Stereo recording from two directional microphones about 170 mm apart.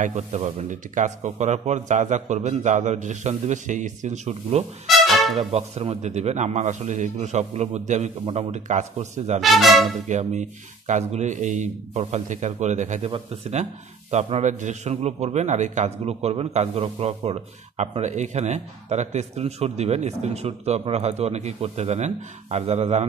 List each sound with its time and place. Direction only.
0.0 s speech: 45° right (ahead or behind)
4.8 s music: centre (ahead or behind)
5.3 s a man's voice: 40° right (ahead or behind)
9.4 s speech: centre (ahead or behind)
10.0 s a man's voice: 45° right (ahead or behind)